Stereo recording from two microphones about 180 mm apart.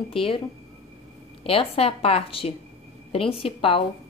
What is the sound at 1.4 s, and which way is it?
Speech, 30° left (ahead or behind).